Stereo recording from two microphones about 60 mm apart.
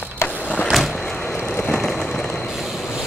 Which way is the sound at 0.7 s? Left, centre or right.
Centre.